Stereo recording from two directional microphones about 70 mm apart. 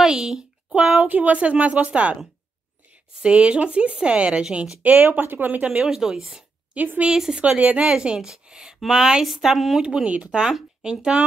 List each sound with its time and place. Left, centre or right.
0.0 s a sound: centre
0.9 s speech: right
3.2 s a woman's voice: centre
4.8 s speech: right; by 6.4 s centre
6.7 s a woman's voice: right
7.1 s a woman's voice: centre